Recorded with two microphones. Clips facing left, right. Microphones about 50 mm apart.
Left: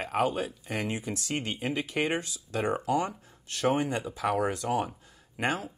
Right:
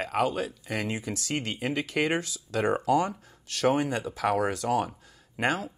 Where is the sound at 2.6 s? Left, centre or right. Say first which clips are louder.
Right 3 dB; right.